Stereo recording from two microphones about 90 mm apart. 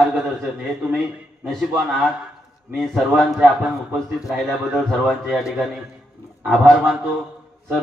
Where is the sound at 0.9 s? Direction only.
Centre (ahead or behind).